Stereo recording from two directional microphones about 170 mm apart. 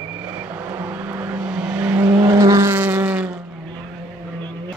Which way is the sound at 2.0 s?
20° right (ahead or behind).